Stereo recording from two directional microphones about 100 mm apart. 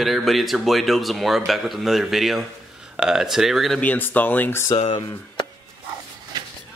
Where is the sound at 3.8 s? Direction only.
15° left (ahead or behind).